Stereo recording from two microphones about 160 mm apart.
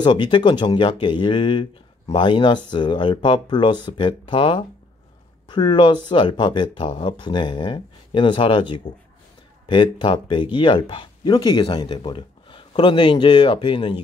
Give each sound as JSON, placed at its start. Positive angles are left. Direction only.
{"t": 0.0, "sound": "speech", "side_deg": 30}